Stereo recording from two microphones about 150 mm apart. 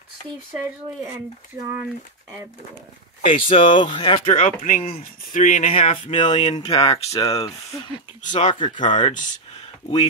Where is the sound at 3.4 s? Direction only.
35° left (ahead or behind).